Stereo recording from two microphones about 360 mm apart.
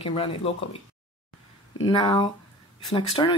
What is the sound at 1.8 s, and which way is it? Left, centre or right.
Speech, centre.